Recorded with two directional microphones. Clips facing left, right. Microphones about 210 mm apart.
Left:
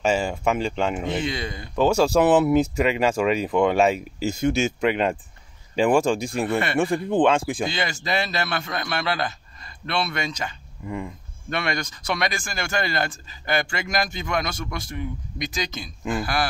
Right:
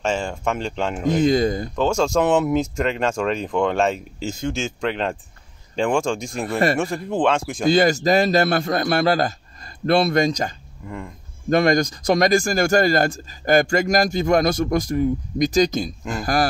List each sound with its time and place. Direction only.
0.0 s speech: 5° left (ahead or behind)
1.2 s speech: 40° right (ahead or behind)
1.8 s speech: 5° left (ahead or behind)
7.6 s speech: 40° right (ahead or behind)
10.8 s speech: 5° left (ahead or behind)
11.5 s speech: 40° right (ahead or behind)